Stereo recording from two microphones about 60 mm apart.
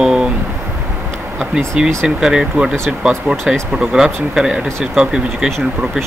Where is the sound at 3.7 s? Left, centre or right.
Centre.